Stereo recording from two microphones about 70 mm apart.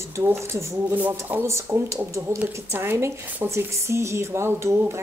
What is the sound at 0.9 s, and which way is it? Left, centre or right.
Speech, right.